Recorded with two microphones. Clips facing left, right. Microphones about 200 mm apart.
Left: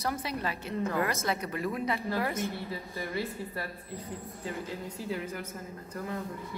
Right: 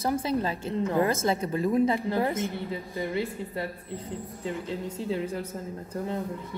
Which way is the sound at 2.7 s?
15° right (ahead or behind).